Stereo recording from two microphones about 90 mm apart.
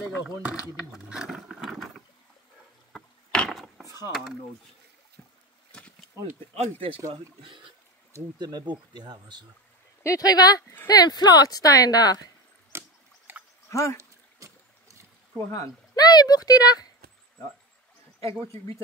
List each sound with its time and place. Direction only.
0.5 s speech: 10° right (ahead or behind)
2.9 s wood: 5° left (ahead or behind)
4.1 s speech: 5° right (ahead or behind)
5.7 s insect: 10° left (ahead or behind)
7.4 s speech: 65° right (ahead or behind)
8.4 s speech: 55° right (ahead or behind)
10.0 s speech: 40° left (ahead or behind)
12.7 s rowboat: 30° right (ahead or behind)
13.3 s a sound: 20° right (ahead or behind)
13.7 s speech: 35° left (ahead or behind)
14.4 s boat: 35° right (ahead or behind)
15.9 s speech: 50° left (ahead or behind)